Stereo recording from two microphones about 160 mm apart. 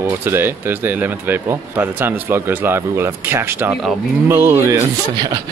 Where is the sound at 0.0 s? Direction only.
15° right (ahead or behind).